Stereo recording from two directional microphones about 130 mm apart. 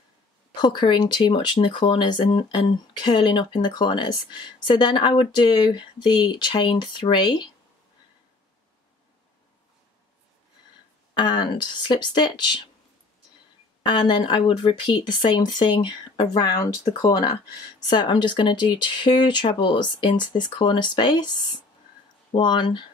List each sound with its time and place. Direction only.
0.6 s speech: 35° left (ahead or behind)
11.1 s speech: 35° left (ahead or behind)
13.8 s speech: 35° left (ahead or behind)